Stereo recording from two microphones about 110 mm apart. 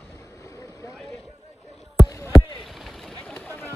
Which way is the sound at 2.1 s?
25° left (ahead or behind).